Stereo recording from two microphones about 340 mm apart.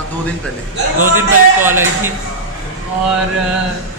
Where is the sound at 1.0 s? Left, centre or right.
Centre.